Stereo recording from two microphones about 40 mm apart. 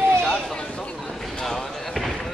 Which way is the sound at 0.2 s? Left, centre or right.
Centre.